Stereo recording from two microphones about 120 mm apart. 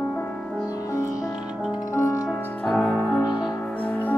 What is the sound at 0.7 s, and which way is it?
Music, 25° left (ahead or behind).